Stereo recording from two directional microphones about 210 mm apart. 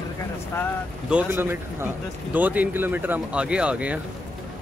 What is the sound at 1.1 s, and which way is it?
Speech, 10° right (ahead or behind).